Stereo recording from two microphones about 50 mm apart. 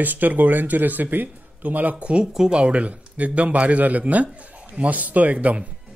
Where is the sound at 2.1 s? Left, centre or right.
Centre.